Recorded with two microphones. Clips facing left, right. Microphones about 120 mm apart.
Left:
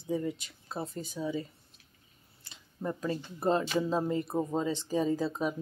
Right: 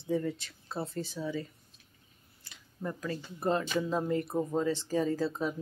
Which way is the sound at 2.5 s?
25° left (ahead or behind).